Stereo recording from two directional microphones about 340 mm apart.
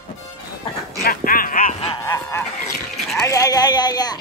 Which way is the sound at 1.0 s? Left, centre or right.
Left.